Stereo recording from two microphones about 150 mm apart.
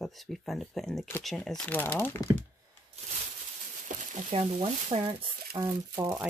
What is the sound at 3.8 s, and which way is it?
Crumpling, 55° right (ahead or behind).